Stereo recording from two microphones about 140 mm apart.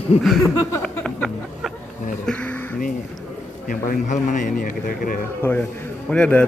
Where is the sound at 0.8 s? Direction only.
5° left (ahead or behind).